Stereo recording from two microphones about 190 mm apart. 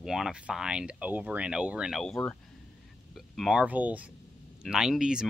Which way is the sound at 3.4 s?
5° right (ahead or behind).